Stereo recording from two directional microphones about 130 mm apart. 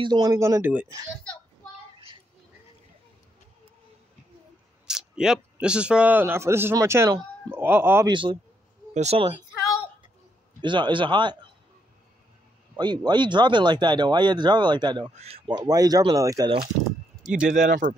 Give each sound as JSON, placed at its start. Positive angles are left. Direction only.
{"t": 0.0, "sound": "speech", "side_deg": -30}
{"t": 4.8, "sound": "a man's voice", "side_deg": -5}
{"t": 8.1, "sound": "speech", "side_deg": -35}
{"t": 8.9, "sound": "speech", "side_deg": -60}
{"t": 10.6, "sound": "speech", "side_deg": -40}
{"t": 12.7, "sound": "speech", "side_deg": -35}
{"t": 15.0, "sound": "speech", "side_deg": -50}
{"t": 15.5, "sound": "speech", "side_deg": -30}
{"t": 17.5, "sound": "speech", "side_deg": -85}